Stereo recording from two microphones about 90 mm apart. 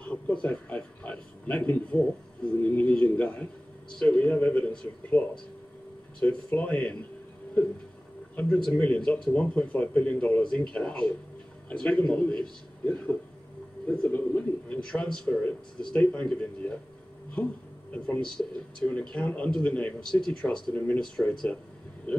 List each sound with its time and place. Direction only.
0.1 s a man's voice: 15° left (ahead or behind)
8.4 s a man's voice: 10° left (ahead or behind)